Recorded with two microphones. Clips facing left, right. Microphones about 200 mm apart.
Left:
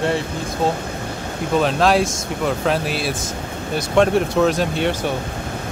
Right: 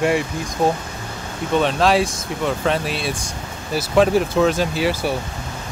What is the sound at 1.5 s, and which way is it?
Speech, centre (ahead or behind).